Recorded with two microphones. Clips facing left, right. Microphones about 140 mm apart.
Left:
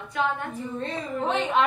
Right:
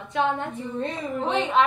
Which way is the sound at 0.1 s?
25° right (ahead or behind).